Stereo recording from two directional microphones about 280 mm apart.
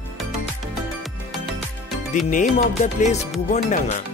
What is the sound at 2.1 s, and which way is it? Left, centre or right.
Speech, left.